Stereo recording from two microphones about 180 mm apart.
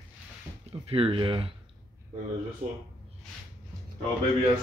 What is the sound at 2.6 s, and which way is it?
Speech, 40° right (ahead or behind).